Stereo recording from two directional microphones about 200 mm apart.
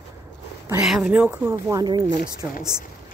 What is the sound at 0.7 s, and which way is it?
Speech, 5° right (ahead or behind).